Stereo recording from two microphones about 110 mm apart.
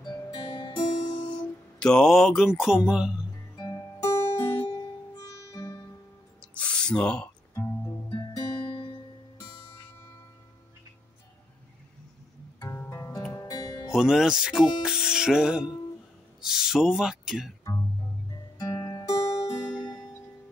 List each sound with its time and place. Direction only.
0.0 s music: 40° left (ahead or behind)
1.8 s speech: 5° left (ahead or behind)
3.5 s music: 35° left (ahead or behind)
6.5 s gasp: 10° left (ahead or behind)
7.5 s music: 20° left (ahead or behind)
8.4 s music: 40° left (ahead or behind)
12.5 s music: 25° left (ahead or behind)
13.9 s speech: 5° right (ahead or behind)
18.6 s music: 40° left (ahead or behind)